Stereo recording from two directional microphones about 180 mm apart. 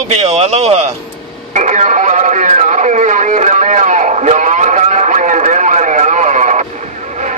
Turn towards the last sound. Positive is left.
turn(degrees=-40)  # may be behind; listen again after turning